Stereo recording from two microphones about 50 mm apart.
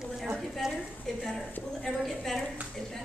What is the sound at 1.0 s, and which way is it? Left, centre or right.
A woman's voice, centre.